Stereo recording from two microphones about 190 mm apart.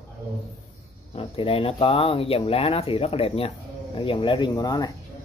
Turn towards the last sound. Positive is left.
turn(degrees=20)  # may be behind; listen again after turning